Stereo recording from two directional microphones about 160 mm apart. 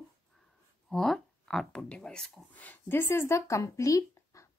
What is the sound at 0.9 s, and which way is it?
Speech, centre (ahead or behind).